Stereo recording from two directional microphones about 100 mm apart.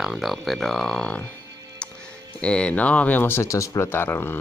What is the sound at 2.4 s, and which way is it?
Speech, 10° left (ahead or behind).